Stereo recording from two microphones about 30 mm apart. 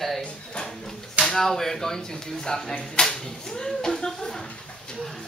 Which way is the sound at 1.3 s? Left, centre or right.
Centre.